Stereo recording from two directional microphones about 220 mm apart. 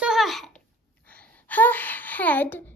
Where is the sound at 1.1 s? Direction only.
5° left (ahead or behind).